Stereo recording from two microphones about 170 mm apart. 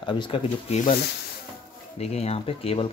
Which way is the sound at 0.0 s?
30° left (ahead or behind).